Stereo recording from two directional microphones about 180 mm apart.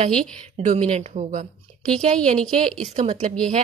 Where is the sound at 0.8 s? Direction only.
35° right (ahead or behind).